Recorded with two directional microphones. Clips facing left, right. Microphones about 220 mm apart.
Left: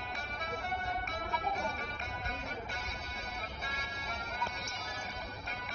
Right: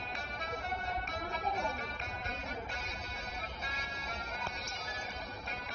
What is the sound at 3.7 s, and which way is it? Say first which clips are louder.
Music: left 1 dB; 60° left (ahead or behind).